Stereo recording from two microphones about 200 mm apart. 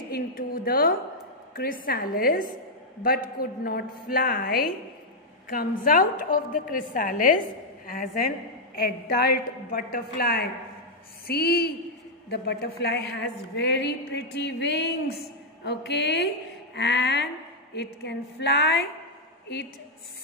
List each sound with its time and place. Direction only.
0.1 s a woman's voice: 50° left (ahead or behind)